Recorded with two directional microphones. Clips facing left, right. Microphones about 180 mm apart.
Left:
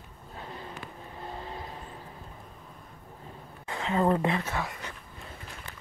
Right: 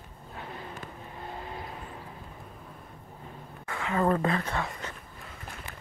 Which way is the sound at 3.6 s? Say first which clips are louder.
Left 1 dB; 25° left (ahead or behind).